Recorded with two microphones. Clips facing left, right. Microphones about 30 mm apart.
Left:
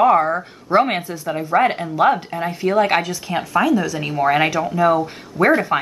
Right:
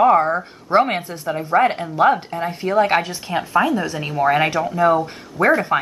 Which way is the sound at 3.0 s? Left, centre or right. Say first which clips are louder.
Even; right.